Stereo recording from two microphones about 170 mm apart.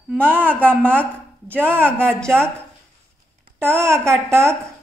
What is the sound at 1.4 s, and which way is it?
Speech, 10° right (ahead or behind).